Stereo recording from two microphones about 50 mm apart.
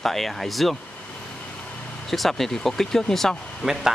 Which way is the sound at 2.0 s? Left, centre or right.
Centre.